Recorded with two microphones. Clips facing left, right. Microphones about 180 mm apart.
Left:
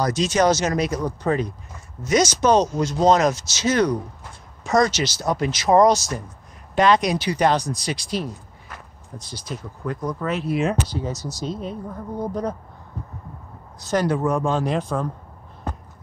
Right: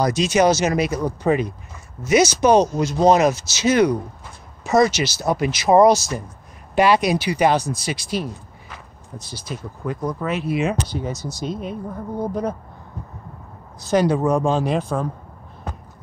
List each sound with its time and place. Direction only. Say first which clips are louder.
0.0 s speech: right 2 dB; 10° right (ahead or behind)
11.1 s speech: right 1 dB; 55° right (ahead or behind)
12.2 s speech: right 2 dB; 5° right (ahead or behind)
13.8 s speech: right 3 dB; 15° right (ahead or behind)